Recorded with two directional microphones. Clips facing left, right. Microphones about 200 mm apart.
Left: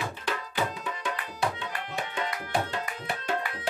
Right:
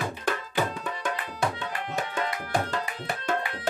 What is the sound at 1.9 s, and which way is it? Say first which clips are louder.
Tabla: right 3 dB; 45° right (ahead or behind).